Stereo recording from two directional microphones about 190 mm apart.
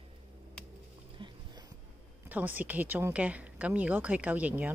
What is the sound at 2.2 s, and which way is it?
Speech, 10° right (ahead or behind).